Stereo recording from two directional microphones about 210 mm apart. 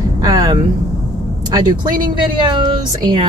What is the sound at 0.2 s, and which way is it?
Vehicle, 15° right (ahead or behind).